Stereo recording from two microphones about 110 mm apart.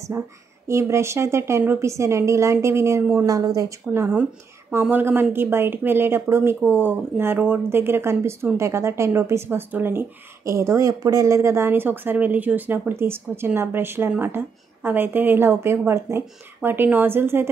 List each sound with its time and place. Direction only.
0.2 s speech: 20° right (ahead or behind)
3.3 s a woman's voice: 30° right (ahead or behind)
4.1 s speech: 10° right (ahead or behind)